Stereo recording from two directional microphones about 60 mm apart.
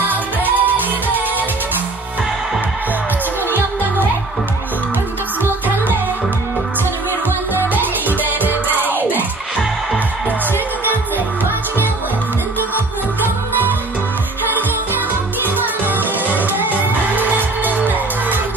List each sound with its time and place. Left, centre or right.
0.1 s music: right
8.3 s music: right
15.4 s music: right